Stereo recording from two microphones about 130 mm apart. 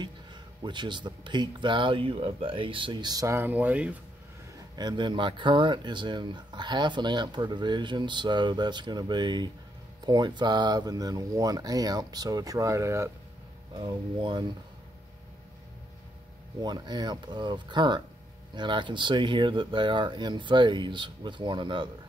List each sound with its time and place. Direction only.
0.0 s speech: 35° right (ahead or behind)
3.3 s speech: 15° right (ahead or behind)
4.7 s speech: 35° right (ahead or behind)
13.7 s speech: 40° right (ahead or behind)
16.6 s speech: 35° right (ahead or behind)